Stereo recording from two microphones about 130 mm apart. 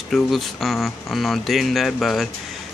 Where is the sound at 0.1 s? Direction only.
Centre (ahead or behind).